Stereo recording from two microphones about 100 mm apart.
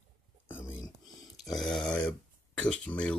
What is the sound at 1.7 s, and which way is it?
Speech, 5° left (ahead or behind).